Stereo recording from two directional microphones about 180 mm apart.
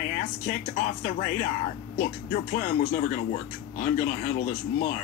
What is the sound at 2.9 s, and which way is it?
Speech, 45° left (ahead or behind).